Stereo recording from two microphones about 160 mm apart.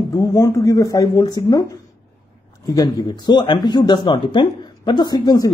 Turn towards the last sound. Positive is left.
turn(degrees=25)  # may be behind; listen again after turning